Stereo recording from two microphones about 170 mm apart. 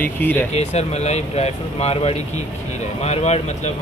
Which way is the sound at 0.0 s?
10° left (ahead or behind).